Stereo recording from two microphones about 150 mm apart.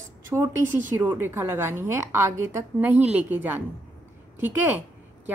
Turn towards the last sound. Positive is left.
turn(degrees=-15)  # may be behind; listen again after turning